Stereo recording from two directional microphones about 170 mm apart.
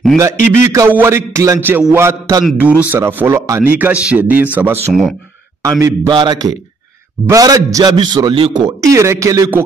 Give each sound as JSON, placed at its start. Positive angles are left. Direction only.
{"t": 0.4, "sound": "a man's voice", "side_deg": 50}
{"t": 0.7, "sound": "a man's voice", "side_deg": -15}